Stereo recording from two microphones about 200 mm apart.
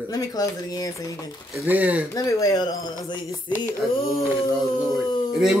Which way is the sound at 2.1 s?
15° left (ahead or behind).